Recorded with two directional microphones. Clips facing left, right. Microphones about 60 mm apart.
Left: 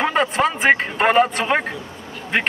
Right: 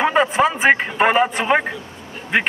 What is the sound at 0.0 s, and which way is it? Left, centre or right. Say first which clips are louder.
A man's voice: right 2 dB; centre.